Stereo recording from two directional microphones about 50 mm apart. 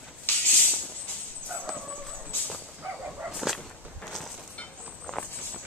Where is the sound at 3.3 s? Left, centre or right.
Centre.